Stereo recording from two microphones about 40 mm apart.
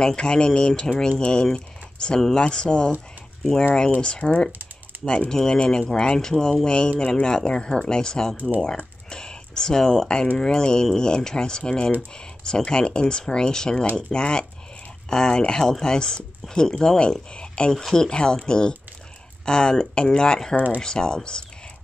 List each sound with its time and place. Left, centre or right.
0.0 s speech: left
4.2 s speech: centre